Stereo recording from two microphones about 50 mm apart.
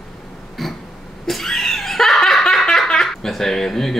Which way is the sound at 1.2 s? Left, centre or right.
Centre.